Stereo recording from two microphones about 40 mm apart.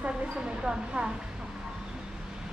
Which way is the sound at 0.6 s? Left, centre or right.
Centre.